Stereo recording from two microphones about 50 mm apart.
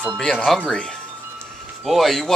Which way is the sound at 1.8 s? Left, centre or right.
Centre.